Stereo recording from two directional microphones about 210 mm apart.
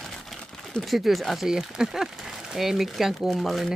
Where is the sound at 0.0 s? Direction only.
Centre (ahead or behind).